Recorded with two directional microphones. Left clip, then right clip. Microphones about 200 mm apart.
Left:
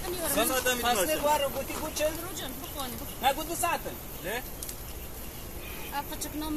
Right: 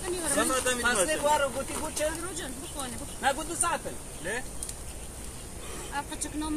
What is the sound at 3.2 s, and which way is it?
Speech, 10° left (ahead or behind).